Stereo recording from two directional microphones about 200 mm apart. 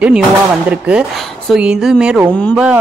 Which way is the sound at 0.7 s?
5° right (ahead or behind).